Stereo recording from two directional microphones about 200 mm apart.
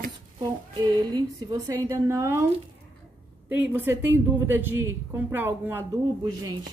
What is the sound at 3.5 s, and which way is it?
A woman's voice, 10° right (ahead or behind).